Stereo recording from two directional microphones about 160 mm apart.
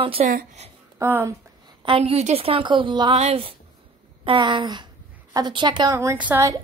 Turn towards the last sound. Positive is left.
turn(degrees=-20)  # may be behind; listen again after turning